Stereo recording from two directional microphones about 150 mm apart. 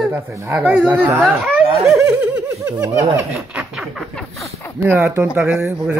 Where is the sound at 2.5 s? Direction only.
20° right (ahead or behind).